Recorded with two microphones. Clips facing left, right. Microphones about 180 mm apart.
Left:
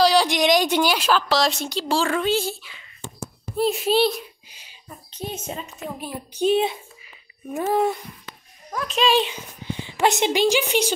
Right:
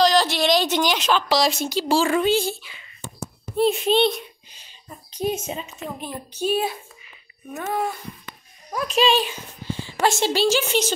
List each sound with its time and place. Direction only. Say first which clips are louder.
0.0 s a woman's voice: left 1 dB; 10° left (ahead or behind)
4.8 s a woman's voice: right 8 dB; 10° right (ahead or behind); by 6.4 s 10° left (ahead or behind)
6.4 s a child's voice: left 4 dB; 20° left (ahead or behind)
8.7 s a child's voice: right 2 dB; 5° right (ahead or behind)
9.2 s a woman's voice: left 1 dB; 20° left (ahead or behind)